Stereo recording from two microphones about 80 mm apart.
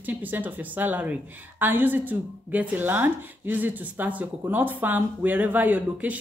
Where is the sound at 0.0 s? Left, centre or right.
Right.